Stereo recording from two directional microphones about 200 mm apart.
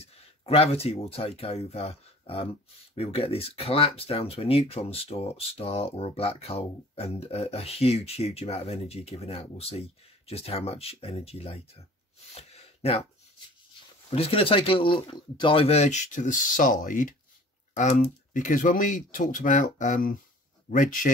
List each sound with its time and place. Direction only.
0.0 s speech: 30° left (ahead or behind)
12.4 s a sound: 30° left (ahead or behind)
14.1 s speech: 30° left (ahead or behind)